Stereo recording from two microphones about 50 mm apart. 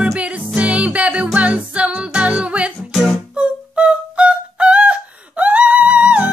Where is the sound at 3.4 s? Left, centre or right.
Right.